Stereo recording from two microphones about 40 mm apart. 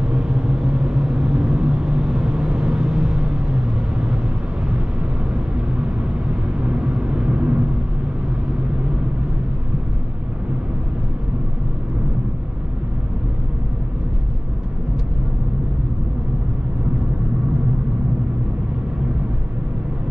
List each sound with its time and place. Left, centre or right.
0.0 s vehicle: centre
6.6 s vehicle: right